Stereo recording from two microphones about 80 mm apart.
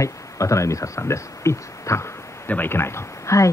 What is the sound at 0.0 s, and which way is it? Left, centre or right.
Speech, left.